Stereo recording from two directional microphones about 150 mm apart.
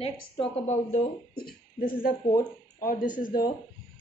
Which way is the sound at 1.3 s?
75° left (ahead or behind).